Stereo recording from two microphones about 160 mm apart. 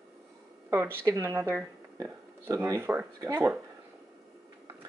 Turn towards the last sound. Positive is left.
turn(degrees=-20)  # may be behind; listen again after turning